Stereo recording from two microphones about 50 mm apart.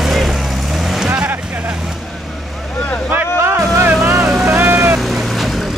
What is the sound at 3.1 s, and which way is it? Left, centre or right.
Vehicle, right.